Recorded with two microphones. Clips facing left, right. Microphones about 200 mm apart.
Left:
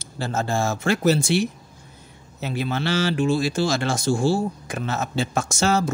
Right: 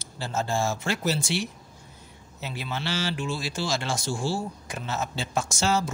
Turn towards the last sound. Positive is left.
turn(degrees=50)  # may be behind; listen again after turning